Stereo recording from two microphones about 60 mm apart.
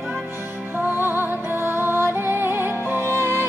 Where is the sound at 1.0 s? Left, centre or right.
Right.